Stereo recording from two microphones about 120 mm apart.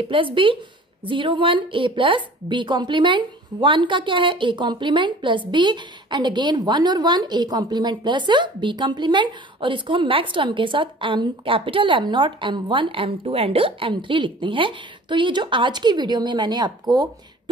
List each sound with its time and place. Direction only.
0.1 s a woman's voice: 45° right (ahead or behind)